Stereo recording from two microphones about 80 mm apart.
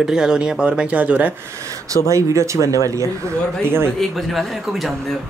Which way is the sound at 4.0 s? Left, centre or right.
Centre.